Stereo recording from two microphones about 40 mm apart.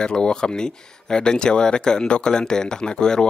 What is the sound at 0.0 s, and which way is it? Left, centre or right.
Speech, left.